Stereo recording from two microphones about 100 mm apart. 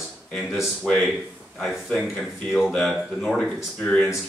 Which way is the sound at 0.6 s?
Centre (ahead or behind).